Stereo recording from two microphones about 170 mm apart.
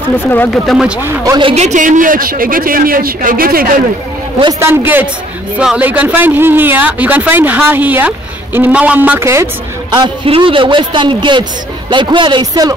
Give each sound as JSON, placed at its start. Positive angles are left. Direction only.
{"t": 0.5, "sound": "speech", "side_deg": 0}
{"t": 1.0, "sound": "speech", "side_deg": -15}
{"t": 1.4, "sound": "a man's voice", "side_deg": -40}
{"t": 4.6, "sound": "a man's voice", "side_deg": -15}